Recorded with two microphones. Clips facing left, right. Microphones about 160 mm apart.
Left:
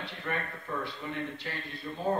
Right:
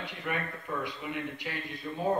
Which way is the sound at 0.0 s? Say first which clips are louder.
Right 1 dB; 15° right (ahead or behind).